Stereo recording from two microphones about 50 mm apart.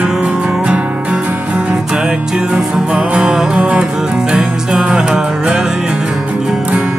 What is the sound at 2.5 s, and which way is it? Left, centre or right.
Music, right.